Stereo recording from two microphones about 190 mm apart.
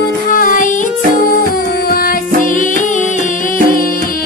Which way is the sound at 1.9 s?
45° left (ahead or behind).